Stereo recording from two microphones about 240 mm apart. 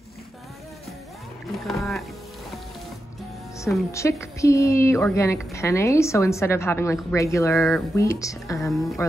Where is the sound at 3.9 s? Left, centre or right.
Centre.